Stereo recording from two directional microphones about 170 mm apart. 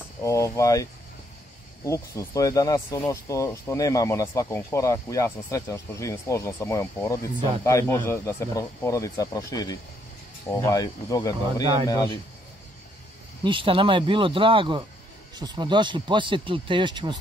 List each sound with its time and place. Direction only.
0.2 s speech: 20° left (ahead or behind)
1.9 s speech: 20° left (ahead or behind)
13.4 s speech: 30° right (ahead or behind)